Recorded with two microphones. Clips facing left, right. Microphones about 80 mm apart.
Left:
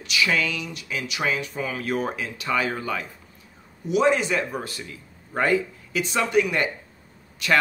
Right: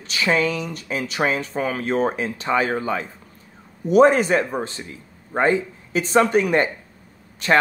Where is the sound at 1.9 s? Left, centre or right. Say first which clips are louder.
Right 5 dB; right.